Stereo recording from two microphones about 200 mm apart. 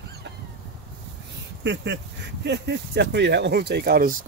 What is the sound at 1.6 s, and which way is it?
Speech, 60° right (ahead or behind).